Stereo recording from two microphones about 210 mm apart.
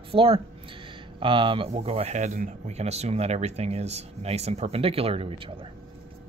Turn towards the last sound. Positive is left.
turn(degrees=-25)  # may be behind; listen again after turning